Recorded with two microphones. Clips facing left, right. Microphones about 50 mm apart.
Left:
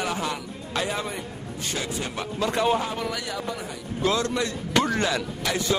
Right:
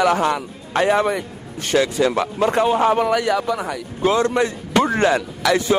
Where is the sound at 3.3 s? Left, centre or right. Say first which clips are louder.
Right 10 dB; right.